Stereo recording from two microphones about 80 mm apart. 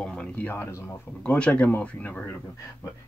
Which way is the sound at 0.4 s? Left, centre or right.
Left.